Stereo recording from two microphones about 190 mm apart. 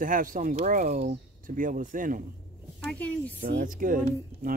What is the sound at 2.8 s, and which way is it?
Speech, 5° left (ahead or behind).